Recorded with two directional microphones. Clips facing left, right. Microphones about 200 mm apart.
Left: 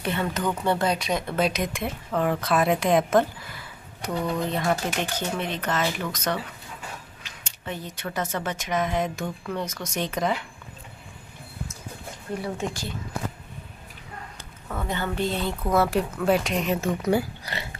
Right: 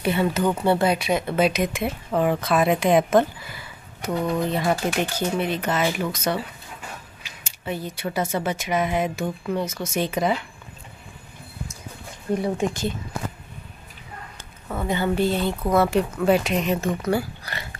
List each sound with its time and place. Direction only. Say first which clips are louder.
0.0 s speech: right 5 dB; 10° right (ahead or behind)
12.4 s speech: right 5 dB; 20° right (ahead or behind)
14.7 s speech: right 5 dB; 10° right (ahead or behind)
17.0 s speech: even; 20° left (ahead or behind)